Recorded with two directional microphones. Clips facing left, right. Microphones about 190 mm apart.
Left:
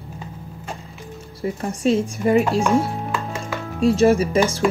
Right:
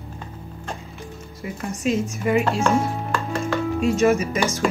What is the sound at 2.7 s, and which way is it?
Music, centre (ahead or behind).